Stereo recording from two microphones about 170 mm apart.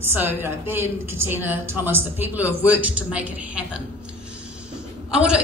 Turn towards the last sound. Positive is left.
turn(degrees=-5)  # may be behind; listen again after turning